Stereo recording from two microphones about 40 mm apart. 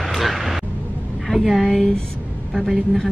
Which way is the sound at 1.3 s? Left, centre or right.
Centre.